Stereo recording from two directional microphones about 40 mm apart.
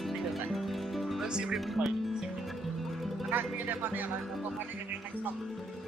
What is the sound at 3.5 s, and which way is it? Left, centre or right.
Speech, right.